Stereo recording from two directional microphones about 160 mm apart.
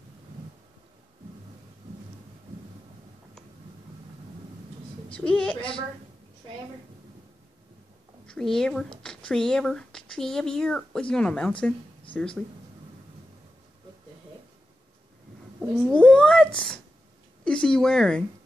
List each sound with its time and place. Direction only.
5.1 s speech: 10° left (ahead or behind)
8.3 s speech: 5° left (ahead or behind)
15.9 s speech: 5° left (ahead or behind)